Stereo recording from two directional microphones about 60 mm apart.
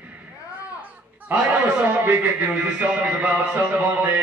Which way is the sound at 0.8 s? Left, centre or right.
Right.